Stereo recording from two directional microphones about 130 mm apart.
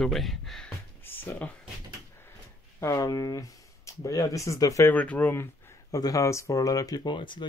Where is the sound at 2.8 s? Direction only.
25° left (ahead or behind).